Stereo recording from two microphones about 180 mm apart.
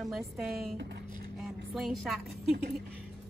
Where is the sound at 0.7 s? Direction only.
65° right (ahead or behind).